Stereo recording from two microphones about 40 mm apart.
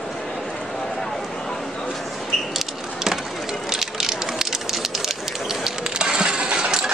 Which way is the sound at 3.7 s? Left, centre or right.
Centre.